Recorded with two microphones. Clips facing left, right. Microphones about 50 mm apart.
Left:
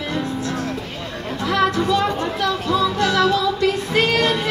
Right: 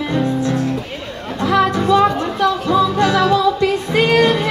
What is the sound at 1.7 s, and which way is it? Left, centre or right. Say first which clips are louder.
Music: right 5 dB; right.